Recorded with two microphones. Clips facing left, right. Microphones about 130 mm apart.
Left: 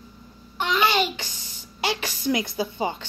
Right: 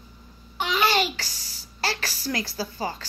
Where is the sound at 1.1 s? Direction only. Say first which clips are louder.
Left 2 dB; 20° left (ahead or behind).